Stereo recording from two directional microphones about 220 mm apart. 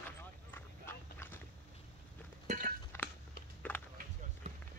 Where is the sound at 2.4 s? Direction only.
35° right (ahead or behind).